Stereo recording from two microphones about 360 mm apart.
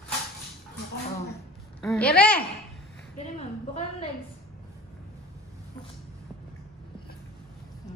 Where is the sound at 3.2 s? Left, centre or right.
Centre.